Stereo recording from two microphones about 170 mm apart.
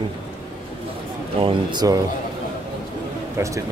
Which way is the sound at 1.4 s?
25° right (ahead or behind).